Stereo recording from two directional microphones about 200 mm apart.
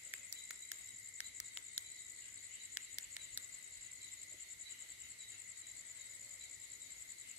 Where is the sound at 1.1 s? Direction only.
5° right (ahead or behind).